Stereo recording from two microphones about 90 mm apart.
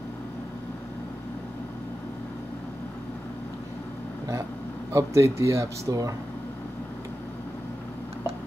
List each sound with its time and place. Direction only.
4.9 s speech: 35° right (ahead or behind)